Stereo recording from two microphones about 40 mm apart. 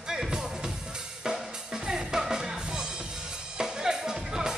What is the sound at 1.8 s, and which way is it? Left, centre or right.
Music, centre.